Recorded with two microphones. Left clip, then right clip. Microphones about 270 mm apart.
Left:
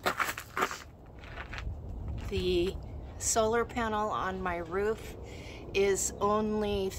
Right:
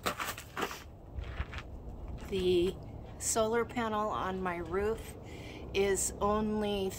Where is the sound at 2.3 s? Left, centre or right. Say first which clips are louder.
Right 1 dB; centre.